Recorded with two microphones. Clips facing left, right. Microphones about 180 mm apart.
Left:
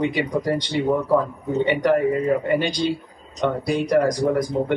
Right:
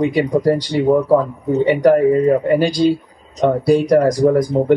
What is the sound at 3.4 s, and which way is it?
Speech, 40° right (ahead or behind).